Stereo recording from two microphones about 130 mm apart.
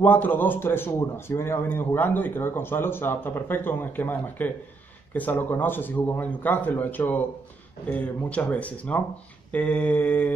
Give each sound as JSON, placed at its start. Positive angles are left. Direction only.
{"t": 0.0, "sound": "a man's voice", "side_deg": 15}